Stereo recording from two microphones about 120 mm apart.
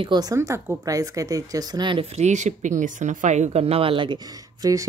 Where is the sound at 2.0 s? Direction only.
65° right (ahead or behind); by 4.9 s 30° right (ahead or behind).